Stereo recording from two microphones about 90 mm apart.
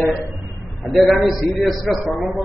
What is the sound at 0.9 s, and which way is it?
A man's voice, centre (ahead or behind).